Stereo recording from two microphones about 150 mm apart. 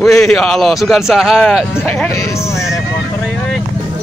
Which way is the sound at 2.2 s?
20° left (ahead or behind).